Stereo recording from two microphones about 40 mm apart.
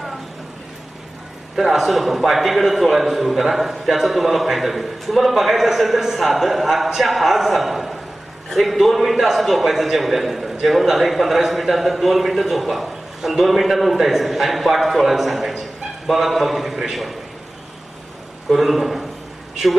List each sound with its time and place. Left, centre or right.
1.6 s a man's voice: centre
18.5 s a man's voice: centre